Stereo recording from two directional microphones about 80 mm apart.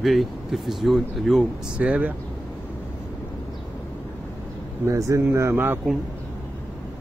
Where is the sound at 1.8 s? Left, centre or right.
Centre.